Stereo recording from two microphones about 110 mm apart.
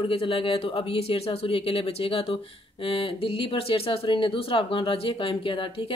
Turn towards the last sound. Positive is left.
turn(degrees=50)  # may be behind; listen again after turning